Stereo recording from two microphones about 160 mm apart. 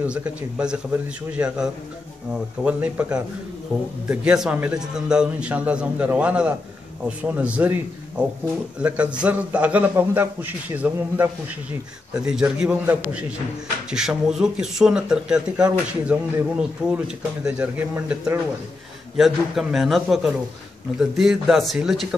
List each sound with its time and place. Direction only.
0.0 s a man's voice: 10° right (ahead or behind)
12.3 s a man's voice: 5° right (ahead or behind)